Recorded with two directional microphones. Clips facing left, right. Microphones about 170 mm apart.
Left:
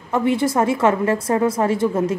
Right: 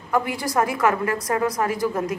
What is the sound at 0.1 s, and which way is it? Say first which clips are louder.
A woman's voice: left 5 dB; 25° left (ahead or behind).